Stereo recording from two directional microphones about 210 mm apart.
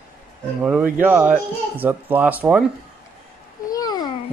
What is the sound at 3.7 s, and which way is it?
Babbling, 20° left (ahead or behind).